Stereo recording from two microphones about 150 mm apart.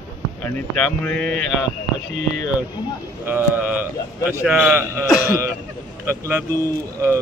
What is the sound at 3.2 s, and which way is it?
A man's voice, 15° right (ahead or behind).